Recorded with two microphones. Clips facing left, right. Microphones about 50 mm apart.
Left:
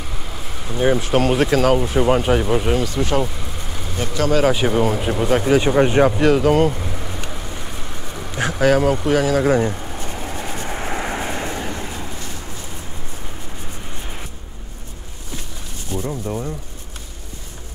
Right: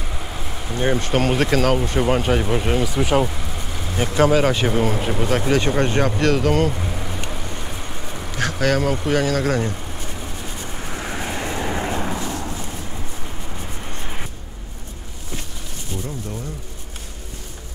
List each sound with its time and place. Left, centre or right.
0.2 s speech: centre
4.3 s speech: centre
8.4 s speech: centre
10.1 s vehicle: left
11.1 s vehicle: centre
11.4 s vehicle: centre
11.7 s vehicle: right
15.9 s a sound: left